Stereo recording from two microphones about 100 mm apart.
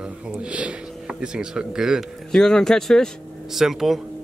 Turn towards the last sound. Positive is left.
turn(degrees=-5)  # may be behind; listen again after turning